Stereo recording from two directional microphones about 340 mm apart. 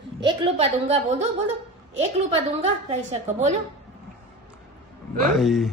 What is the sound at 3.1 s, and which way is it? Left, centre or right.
Speech, centre.